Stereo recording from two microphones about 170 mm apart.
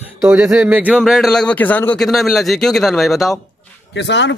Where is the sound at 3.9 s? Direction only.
90° left.